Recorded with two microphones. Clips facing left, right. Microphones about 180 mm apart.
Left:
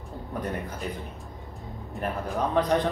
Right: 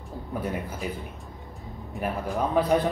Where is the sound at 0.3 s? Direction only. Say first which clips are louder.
Right 1 dB; 5° right (ahead or behind).